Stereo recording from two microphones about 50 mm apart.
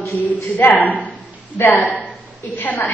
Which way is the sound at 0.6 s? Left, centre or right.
Left.